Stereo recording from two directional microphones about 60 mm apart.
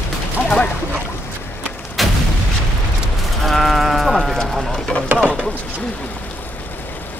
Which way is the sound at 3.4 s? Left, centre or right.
Centre.